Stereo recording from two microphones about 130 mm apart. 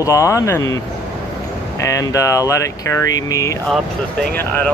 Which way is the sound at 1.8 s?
25° left (ahead or behind).